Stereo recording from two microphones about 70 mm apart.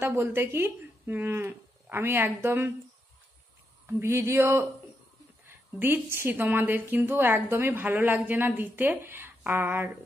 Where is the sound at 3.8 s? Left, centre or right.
Right.